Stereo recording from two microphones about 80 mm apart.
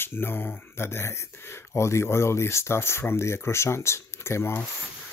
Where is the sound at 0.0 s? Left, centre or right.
Left.